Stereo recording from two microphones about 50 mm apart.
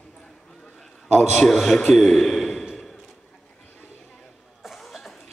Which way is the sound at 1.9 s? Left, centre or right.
Centre.